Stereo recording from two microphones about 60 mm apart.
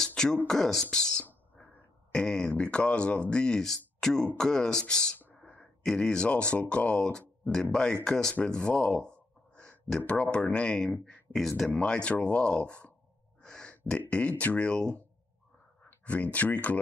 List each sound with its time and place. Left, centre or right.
0.0 s beatboxing: centre
0.5 s speech: centre
11.3 s speech: centre
11.8 s speech: centre
13.4 s a sound: centre
14.4 s speech: left
15.9 s a sound: left
16.3 s speech: left